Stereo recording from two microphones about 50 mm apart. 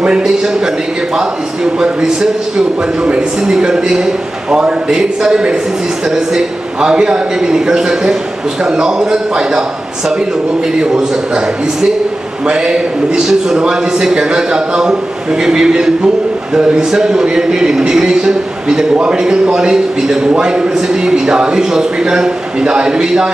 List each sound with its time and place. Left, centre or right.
0.0 s a man's voice: centre
3.5 s a man's voice: centre